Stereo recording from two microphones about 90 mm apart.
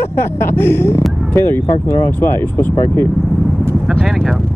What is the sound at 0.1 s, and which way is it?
Speech, 25° left (ahead or behind).